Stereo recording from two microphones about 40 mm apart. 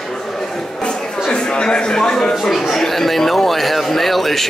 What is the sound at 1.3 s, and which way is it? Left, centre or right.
A man's voice, left.